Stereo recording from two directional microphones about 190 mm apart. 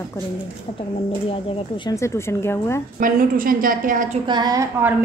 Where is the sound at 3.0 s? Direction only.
50° right (ahead or behind).